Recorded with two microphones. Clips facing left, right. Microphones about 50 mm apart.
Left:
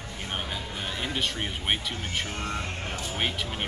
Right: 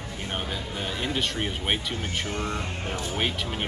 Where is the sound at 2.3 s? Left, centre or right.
Right.